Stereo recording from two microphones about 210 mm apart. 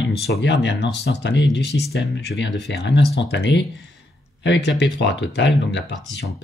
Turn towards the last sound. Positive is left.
turn(degrees=55)  # may be behind; listen again after turning